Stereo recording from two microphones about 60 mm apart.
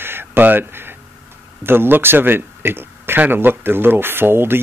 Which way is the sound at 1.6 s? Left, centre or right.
Right.